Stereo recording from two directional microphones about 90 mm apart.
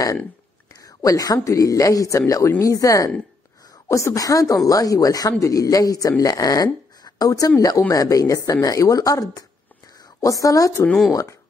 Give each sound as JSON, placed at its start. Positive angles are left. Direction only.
{"t": 0.8, "sound": "speech", "side_deg": 40}